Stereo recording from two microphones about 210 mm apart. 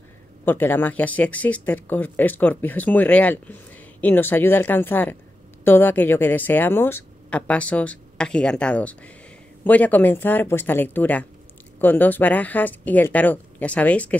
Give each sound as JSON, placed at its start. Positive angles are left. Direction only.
{"t": 0.5, "sound": "speech", "side_deg": 10}